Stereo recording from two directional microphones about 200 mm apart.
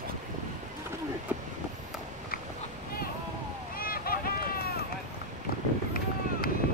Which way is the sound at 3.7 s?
50° left (ahead or behind).